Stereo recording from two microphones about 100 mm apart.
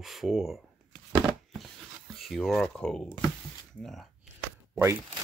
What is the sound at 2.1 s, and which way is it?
Speech, centre (ahead or behind).